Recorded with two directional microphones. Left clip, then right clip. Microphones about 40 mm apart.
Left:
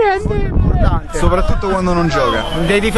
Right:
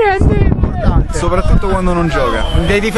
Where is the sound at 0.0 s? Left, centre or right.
Right.